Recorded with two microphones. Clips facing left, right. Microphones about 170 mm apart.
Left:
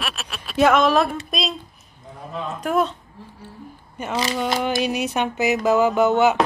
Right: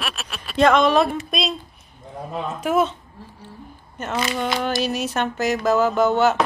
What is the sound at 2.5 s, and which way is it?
Speech, centre (ahead or behind).